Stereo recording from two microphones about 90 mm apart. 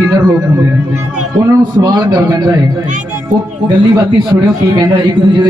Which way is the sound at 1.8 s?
50° right (ahead or behind).